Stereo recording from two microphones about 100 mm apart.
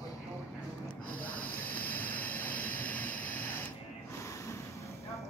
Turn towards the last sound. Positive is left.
turn(degrees=20)  # may be behind; listen again after turning